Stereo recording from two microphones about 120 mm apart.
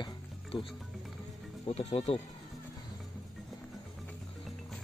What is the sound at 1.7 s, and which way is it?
Speech, 55° left (ahead or behind).